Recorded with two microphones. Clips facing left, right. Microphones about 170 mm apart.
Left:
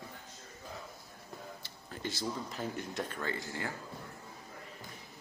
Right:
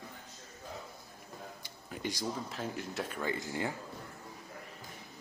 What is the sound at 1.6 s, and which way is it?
Tick-tock, 15° right (ahead or behind).